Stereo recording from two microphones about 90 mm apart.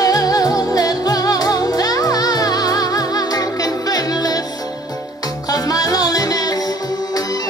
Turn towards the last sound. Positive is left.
turn(degrees=45)  # may be behind; listen again after turning